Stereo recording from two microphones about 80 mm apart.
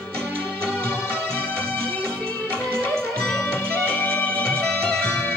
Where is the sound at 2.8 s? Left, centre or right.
Centre.